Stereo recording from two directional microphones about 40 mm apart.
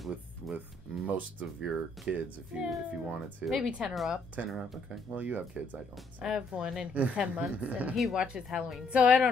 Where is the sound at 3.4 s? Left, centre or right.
Centre.